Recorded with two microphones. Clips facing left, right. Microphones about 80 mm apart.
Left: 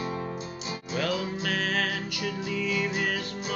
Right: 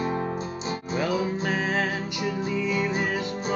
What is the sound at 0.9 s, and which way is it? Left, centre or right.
Music, right.